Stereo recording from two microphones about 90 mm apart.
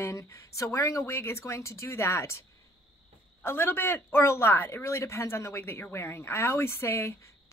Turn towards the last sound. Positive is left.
turn(degrees=30)  # may be behind; listen again after turning